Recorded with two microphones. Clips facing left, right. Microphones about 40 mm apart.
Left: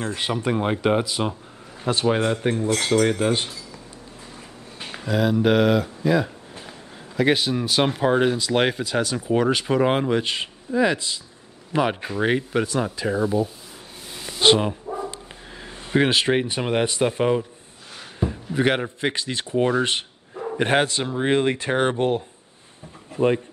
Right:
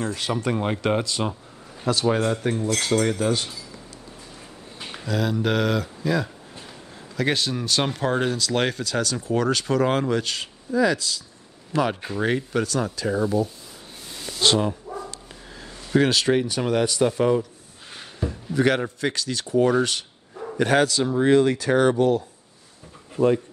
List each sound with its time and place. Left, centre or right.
0.0 s speech: left
0.3 s speech: centre
2.0 s speech: left
4.7 s speech: left
14.4 s speech: left
14.9 s dog: left
18.2 s a sound: left
18.9 s speech: left